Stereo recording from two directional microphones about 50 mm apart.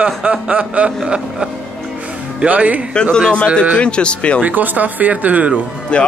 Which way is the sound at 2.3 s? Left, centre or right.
Right.